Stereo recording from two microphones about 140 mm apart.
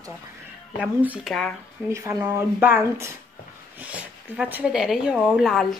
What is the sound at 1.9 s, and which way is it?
A woman's voice, 25° right (ahead or behind).